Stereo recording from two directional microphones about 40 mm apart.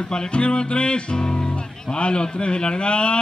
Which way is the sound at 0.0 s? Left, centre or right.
Left.